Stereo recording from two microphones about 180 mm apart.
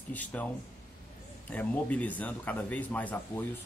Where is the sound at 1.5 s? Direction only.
10° left (ahead or behind).